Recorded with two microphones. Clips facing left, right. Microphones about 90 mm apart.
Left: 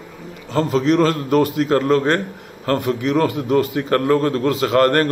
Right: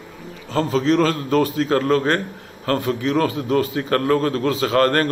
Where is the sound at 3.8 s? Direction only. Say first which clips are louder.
Left 2 dB; 30° left (ahead or behind).